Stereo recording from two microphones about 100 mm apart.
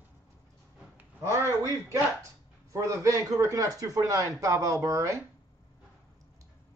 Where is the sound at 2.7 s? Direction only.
30° right (ahead or behind).